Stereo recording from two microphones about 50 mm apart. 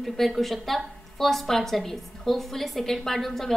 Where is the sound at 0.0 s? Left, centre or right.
Centre.